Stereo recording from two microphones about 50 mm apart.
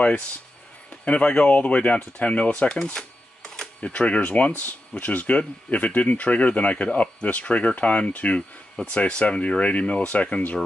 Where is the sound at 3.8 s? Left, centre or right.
Left.